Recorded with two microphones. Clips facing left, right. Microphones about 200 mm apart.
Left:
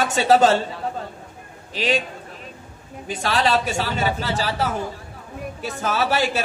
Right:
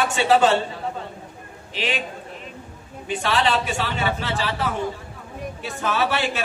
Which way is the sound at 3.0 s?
40° left (ahead or behind).